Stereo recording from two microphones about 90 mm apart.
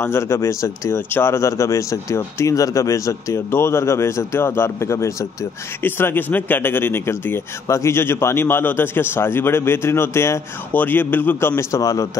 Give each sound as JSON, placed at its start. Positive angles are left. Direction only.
{"t": 0.0, "sound": "speech", "side_deg": 30}
{"t": 5.8, "sound": "a man's voice", "side_deg": 25}
{"t": 10.7, "sound": "a man's voice", "side_deg": 20}